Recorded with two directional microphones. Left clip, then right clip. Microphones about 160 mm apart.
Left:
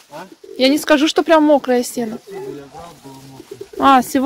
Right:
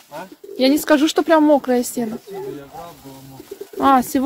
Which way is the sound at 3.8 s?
Centre (ahead or behind).